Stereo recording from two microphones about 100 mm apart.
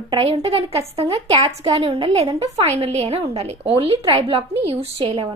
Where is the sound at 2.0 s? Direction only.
90° right.